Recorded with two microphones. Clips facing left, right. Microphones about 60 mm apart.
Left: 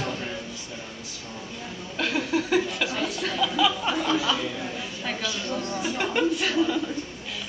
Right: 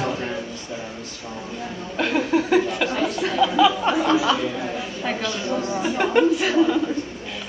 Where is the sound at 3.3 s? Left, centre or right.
Centre.